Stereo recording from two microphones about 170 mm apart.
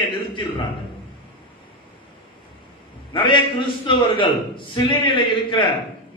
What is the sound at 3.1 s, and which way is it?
A man's voice, 30° left (ahead or behind).